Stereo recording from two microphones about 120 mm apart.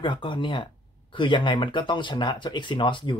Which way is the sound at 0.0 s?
40° left (ahead or behind).